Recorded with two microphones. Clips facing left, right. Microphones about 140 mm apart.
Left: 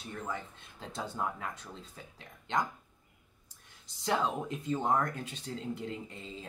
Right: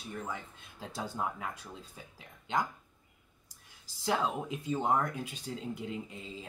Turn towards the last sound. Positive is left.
turn(degrees=-5)  # may be behind; listen again after turning